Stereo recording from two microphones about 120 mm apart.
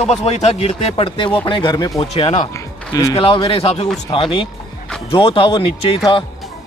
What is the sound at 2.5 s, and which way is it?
Music, 25° left (ahead or behind).